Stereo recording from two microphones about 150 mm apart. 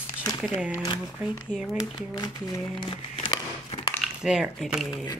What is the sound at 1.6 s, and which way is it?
Speech, 5° right (ahead or behind).